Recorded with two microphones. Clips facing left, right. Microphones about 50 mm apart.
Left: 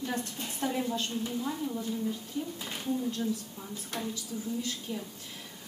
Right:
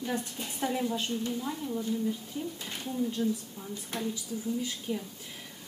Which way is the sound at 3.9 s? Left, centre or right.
Centre.